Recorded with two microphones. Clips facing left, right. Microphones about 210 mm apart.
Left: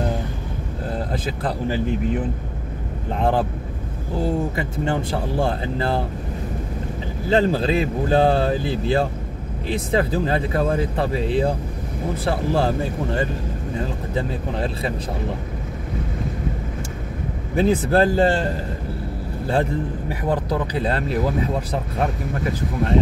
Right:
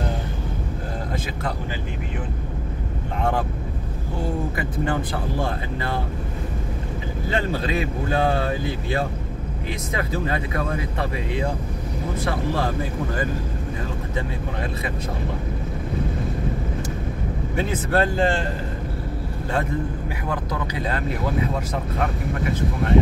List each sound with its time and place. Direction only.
3.2 s speech: 30° left (ahead or behind)
7.2 s speech: 30° left (ahead or behind)
17.6 s speech: 30° left (ahead or behind)
20.1 s speech: 35° left (ahead or behind)
22.5 s speech: 35° left (ahead or behind)